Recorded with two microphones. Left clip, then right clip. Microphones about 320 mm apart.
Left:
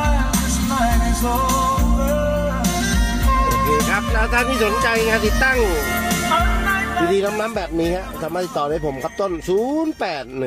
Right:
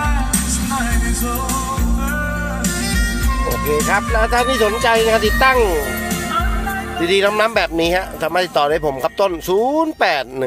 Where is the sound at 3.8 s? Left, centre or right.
Right.